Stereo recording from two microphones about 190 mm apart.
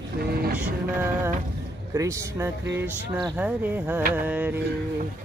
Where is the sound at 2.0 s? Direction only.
15° right (ahead or behind).